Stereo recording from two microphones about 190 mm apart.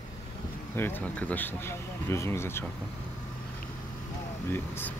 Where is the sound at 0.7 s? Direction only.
10° left (ahead or behind).